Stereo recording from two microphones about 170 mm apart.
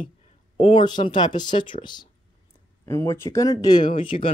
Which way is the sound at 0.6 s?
30° left (ahead or behind).